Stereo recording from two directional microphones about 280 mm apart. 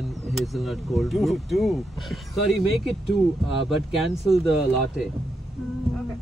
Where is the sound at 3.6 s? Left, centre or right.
Centre.